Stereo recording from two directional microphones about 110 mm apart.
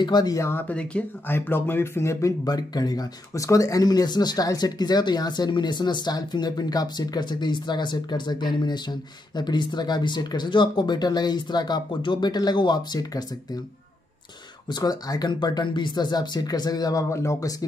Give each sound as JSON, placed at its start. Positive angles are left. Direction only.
{"t": 0.0, "sound": "speech", "side_deg": 40}
{"t": 2.4, "sound": "speech", "side_deg": 35}
{"t": 14.7, "sound": "speech", "side_deg": 35}